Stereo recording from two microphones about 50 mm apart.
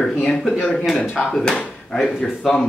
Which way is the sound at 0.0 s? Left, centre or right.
Centre.